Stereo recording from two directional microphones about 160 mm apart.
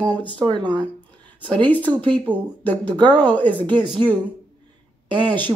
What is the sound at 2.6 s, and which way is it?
Speech, 10° left (ahead or behind).